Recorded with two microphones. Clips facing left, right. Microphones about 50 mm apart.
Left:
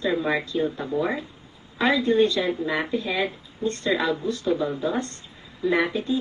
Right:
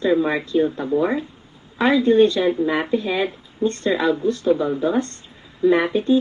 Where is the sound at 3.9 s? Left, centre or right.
Right.